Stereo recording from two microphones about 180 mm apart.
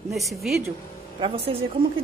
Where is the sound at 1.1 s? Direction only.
30° right (ahead or behind).